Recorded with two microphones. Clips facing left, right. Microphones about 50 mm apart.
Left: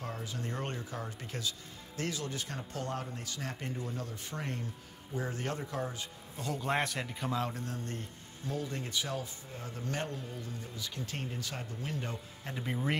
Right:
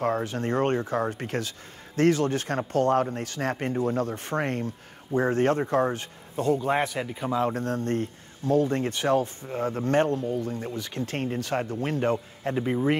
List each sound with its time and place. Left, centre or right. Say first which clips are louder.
0.0 s speech: right 14 dB; right
6.6 s speech: right 7 dB; centre
7.5 s speech: right 13 dB; right
12.6 s speech: right 9 dB; centre